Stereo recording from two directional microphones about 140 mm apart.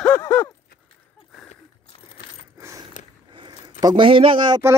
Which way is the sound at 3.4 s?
30° right (ahead or behind).